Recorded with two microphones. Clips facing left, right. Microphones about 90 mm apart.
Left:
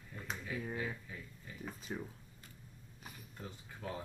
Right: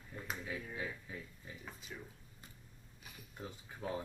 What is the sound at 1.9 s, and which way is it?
Speech, 45° left (ahead or behind).